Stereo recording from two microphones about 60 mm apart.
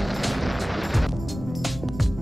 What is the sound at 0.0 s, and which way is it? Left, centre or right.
Music, centre.